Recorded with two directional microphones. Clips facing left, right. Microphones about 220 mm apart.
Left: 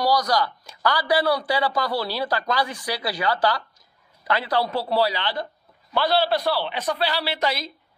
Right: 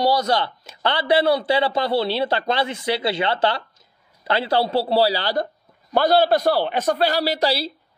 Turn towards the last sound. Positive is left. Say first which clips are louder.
# right 5 dB
turn(degrees=-35)  # may be behind; listen again after turning